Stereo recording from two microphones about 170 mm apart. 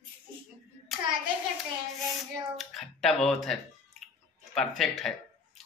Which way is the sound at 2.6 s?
Centre (ahead or behind).